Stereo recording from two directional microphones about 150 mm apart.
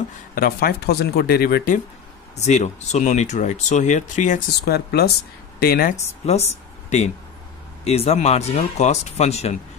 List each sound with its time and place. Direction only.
0.3 s speech: 85° left
2.3 s speech: 50° left (ahead or behind)
4.6 s speech: 90° left
6.2 s speech: 45° left (ahead or behind)